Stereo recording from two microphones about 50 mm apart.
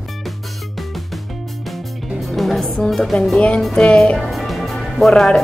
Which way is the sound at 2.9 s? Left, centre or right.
Centre.